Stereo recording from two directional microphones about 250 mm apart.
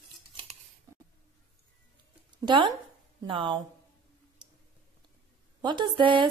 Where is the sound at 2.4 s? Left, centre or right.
Centre.